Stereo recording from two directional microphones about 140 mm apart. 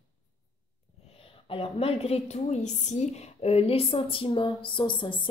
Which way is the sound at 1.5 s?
45° left (ahead or behind).